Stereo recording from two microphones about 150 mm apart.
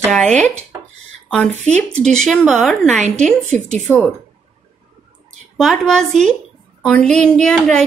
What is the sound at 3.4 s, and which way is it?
Speech, 50° right (ahead or behind).